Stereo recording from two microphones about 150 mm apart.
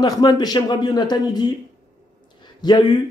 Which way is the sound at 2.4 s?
30° left (ahead or behind).